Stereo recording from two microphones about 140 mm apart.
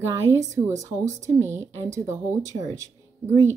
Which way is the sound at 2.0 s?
20° right (ahead or behind).